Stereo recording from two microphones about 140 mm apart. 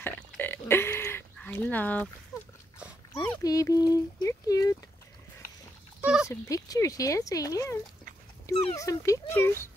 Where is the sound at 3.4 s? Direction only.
25° left (ahead or behind).